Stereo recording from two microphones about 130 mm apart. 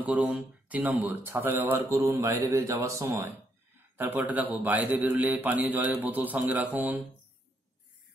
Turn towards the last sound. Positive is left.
turn(degrees=-15)  # may be behind; listen again after turning